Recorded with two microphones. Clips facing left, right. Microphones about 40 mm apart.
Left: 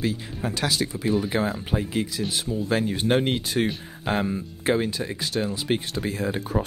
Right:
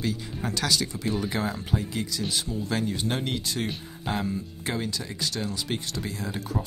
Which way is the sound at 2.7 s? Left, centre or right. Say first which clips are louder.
Left 6 dB; left.